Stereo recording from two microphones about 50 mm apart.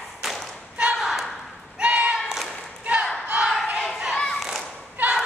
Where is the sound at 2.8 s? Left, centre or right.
Right.